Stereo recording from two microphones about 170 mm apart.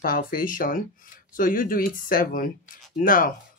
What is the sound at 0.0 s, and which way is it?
Speech, 55° left (ahead or behind).